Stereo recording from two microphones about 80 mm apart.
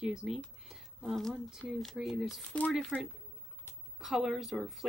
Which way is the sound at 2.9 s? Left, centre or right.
Centre.